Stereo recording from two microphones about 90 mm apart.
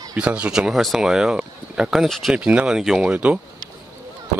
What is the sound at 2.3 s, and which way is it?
Speech, 10° right (ahead or behind).